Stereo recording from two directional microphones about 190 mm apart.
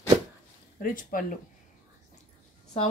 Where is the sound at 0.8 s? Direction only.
45° left (ahead or behind).